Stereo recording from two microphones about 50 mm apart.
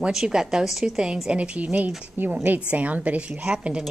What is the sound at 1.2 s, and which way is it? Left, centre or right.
A woman's voice, right.